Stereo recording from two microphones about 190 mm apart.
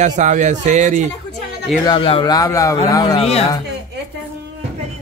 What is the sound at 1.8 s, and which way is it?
Speech, 25° left (ahead or behind).